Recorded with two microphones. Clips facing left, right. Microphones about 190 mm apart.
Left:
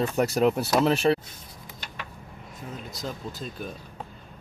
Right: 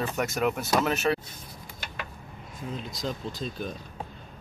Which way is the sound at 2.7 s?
5° left (ahead or behind).